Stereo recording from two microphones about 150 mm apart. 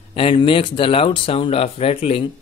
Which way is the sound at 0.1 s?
40° left (ahead or behind).